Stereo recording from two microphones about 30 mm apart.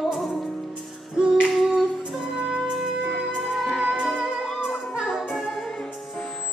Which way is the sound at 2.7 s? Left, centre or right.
Centre.